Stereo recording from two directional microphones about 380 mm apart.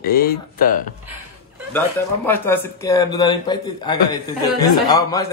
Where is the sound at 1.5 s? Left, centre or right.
Centre.